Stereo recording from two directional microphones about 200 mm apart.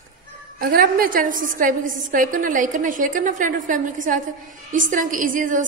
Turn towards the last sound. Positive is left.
turn(degrees=-40)  # may be behind; listen again after turning